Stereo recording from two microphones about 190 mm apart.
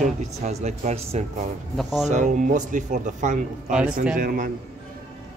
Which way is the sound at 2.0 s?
40° right (ahead or behind).